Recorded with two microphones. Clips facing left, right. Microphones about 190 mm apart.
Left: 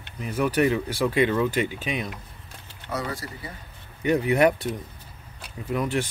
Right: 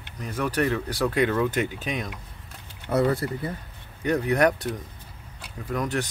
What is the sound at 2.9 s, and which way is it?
Speech, 45° right (ahead or behind).